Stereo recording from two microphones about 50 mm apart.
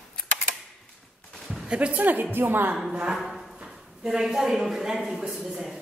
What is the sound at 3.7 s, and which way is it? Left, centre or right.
Speech, centre.